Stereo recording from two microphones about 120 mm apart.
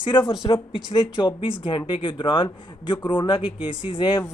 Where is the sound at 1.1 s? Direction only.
40° left (ahead or behind).